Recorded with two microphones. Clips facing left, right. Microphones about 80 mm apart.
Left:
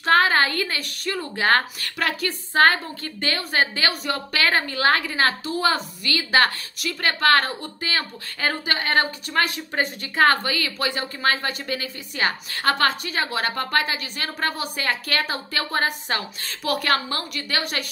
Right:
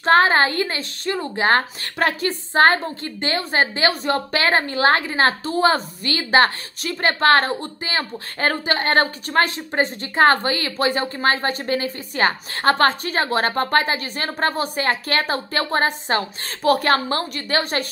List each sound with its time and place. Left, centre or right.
0.0 s a woman's voice: right